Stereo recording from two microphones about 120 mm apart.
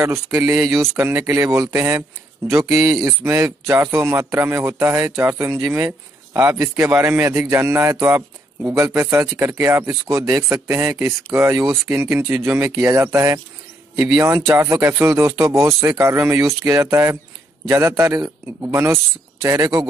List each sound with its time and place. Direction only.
0.4 s speech: 25° right (ahead or behind)
0.7 s speech: 5° right (ahead or behind)
0.9 s speech: 20° right (ahead or behind)
3.1 s speech: 20° right (ahead or behind)